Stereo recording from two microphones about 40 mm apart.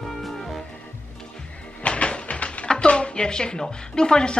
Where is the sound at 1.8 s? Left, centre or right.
Left.